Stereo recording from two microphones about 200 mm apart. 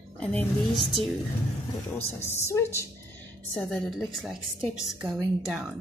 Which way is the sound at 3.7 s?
Centre (ahead or behind).